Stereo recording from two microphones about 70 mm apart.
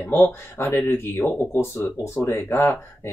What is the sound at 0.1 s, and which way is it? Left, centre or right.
Speech, left.